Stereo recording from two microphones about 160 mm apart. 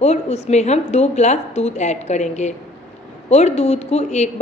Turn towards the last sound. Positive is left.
turn(degrees=45)  # may be behind; listen again after turning